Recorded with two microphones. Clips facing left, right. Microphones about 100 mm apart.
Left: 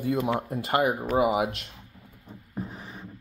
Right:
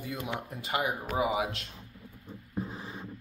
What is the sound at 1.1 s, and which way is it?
Speech, 50° left (ahead or behind).